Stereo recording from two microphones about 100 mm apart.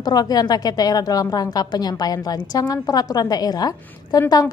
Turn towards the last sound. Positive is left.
turn(degrees=40)  # may be behind; listen again after turning